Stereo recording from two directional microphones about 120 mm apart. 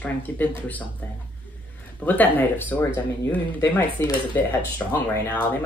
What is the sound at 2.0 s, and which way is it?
Speech, 15° left (ahead or behind).